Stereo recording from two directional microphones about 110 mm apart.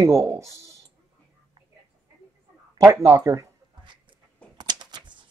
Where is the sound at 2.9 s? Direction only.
25° right (ahead or behind).